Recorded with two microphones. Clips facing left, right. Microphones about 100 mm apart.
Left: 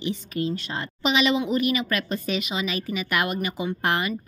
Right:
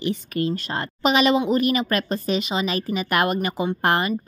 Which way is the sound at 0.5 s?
45° right (ahead or behind).